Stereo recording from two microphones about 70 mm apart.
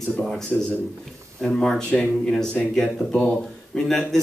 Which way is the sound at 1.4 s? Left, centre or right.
Centre.